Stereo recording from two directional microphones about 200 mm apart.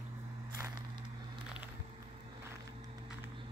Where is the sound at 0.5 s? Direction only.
15° right (ahead or behind).